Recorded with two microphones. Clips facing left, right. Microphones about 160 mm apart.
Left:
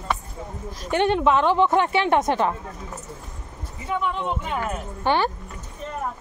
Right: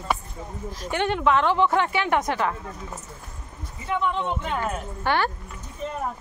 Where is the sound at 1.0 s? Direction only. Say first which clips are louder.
Left 2 dB; 20° left (ahead or behind).